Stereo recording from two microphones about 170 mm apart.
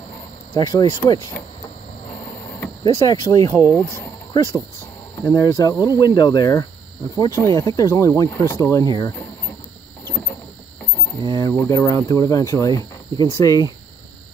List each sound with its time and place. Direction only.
0.6 s speech: 20° left (ahead or behind)
2.8 s speech: 25° left (ahead or behind)
11.1 s speech: 20° left (ahead or behind)